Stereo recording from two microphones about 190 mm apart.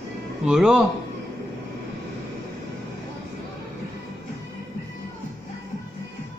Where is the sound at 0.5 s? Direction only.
Centre (ahead or behind).